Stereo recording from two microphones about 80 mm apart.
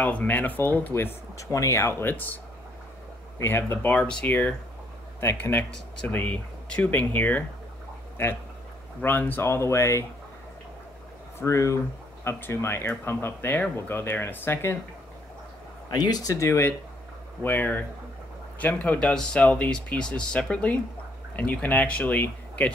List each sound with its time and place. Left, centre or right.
0.0 s speech: centre
1.5 s speech: left
3.4 s speech: left
4.0 s speech: centre
9.0 s speech: left
11.4 s speech: left
12.3 s speech: left
15.9 s speech: left
17.4 s speech: left